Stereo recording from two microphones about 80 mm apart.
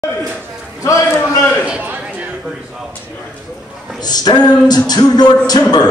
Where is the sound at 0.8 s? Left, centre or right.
Left.